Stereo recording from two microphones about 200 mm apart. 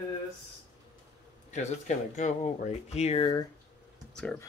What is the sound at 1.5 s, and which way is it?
Speech, 35° left (ahead or behind).